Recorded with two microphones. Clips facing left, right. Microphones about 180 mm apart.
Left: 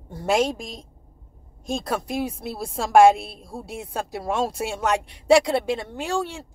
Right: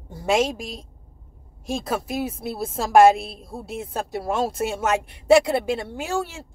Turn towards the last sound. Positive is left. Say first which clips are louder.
# even
turn(degrees=-5)  # may be behind; listen again after turning